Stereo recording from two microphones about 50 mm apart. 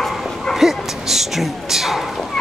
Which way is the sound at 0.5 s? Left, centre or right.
Centre.